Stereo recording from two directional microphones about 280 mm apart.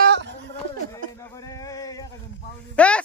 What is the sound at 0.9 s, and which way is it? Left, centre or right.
Speech, centre.